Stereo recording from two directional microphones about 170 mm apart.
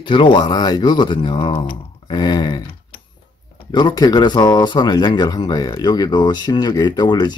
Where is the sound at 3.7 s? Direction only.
25° left (ahead or behind).